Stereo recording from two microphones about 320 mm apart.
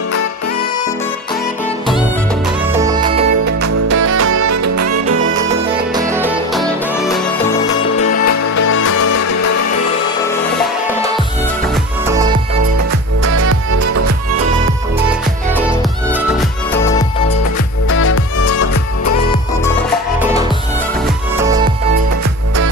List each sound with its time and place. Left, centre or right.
2.7 s music: centre
3.4 s music: right
4.3 s music: right
5.9 s music: centre
8.0 s music: left
8.7 s music: left
13.2 s music: right
17.8 s music: left